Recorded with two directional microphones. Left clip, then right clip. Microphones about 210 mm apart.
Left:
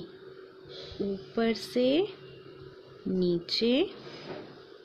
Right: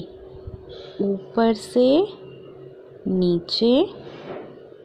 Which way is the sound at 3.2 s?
10° right (ahead or behind).